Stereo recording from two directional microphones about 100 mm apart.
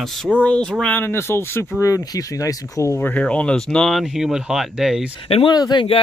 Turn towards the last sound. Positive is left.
turn(degrees=45)  # may be behind; listen again after turning